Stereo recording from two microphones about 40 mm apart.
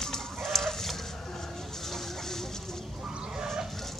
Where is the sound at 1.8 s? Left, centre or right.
Centre.